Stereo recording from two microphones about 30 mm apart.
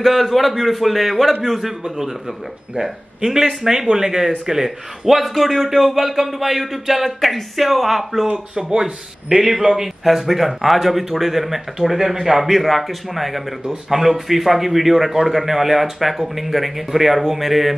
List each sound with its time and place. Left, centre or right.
0.0 s a man's voice: centre
3.3 s a man's voice: centre
8.5 s speech: right; by 17.7 s centre